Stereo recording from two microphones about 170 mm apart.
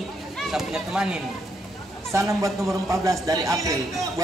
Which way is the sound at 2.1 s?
15° right (ahead or behind).